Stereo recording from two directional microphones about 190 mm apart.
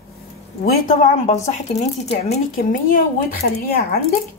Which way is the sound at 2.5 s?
50° left (ahead or behind).